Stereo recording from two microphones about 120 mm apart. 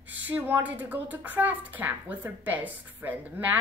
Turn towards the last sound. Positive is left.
turn(degrees=-15)  # may be behind; listen again after turning